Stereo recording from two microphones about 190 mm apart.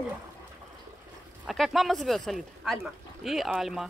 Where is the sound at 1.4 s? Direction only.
Centre (ahead or behind).